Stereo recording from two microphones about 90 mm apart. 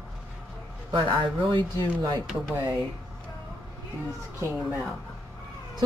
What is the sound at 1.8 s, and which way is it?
Speech, 50° right (ahead or behind).